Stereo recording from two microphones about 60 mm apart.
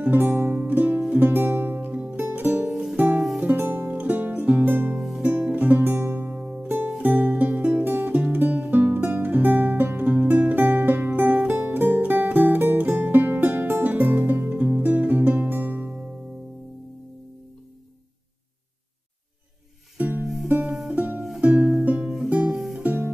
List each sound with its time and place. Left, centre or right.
0.0 s music: right
2.7 s music: centre
3.0 s music: right
6.4 s music: right
20.0 s music: right